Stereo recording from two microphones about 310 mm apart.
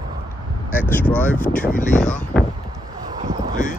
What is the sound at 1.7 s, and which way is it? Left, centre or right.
Speech, left.